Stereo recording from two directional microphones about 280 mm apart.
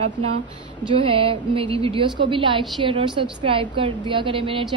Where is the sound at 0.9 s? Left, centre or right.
Centre.